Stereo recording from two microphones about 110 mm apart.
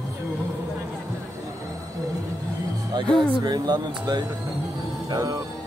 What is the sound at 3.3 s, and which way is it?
Speech, 40° right (ahead or behind).